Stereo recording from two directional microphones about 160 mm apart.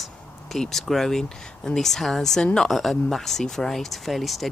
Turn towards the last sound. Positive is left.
turn(degrees=0)  # may be behind; listen again after turning